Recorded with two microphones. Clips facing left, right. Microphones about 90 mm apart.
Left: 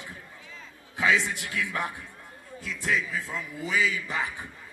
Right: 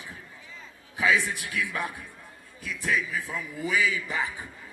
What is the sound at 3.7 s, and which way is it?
Speech, 20° right (ahead or behind).